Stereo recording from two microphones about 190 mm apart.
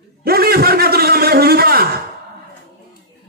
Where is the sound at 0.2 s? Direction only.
55° right (ahead or behind).